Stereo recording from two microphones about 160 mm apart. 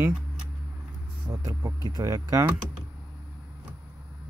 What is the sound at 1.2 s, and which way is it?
Speech, 20° right (ahead or behind).